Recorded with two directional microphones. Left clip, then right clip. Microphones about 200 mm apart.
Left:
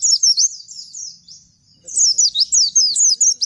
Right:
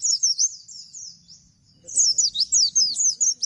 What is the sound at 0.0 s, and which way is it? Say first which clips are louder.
Bird: left 7 dB; 10° left (ahead or behind).